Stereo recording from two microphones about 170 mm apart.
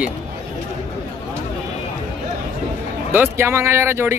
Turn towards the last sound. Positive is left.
turn(degrees=-15)  # may be behind; listen again after turning